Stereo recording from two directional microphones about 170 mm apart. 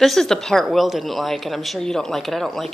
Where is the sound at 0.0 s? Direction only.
Centre (ahead or behind).